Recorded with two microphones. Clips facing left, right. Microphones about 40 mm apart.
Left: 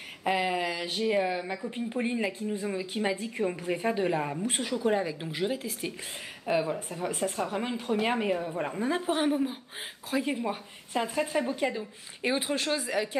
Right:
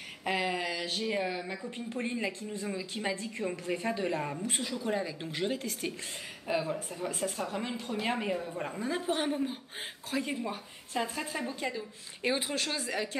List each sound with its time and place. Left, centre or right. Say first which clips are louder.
0.2 s speech: left 4 dB; centre